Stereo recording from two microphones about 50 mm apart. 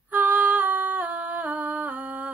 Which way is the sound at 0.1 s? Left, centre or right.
Right.